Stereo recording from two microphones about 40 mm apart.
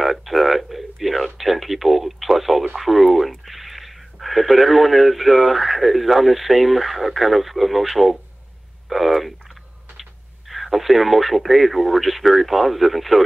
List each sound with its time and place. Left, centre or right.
0.0 s speech: centre
8.8 s a sound: centre
10.5 s speech: centre